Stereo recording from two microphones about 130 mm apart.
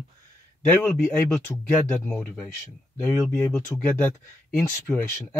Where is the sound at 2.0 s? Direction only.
15° left (ahead or behind).